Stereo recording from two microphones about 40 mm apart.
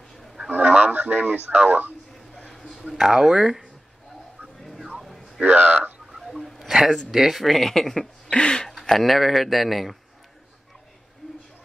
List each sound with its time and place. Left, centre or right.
0.6 s a sound: right
2.5 s a sound: centre
3.0 s speech: centre
5.0 s a sound: centre
5.4 s speech: right
6.1 s sneeze: centre
6.7 s speech: centre
8.3 s speech: left
8.6 s speech: centre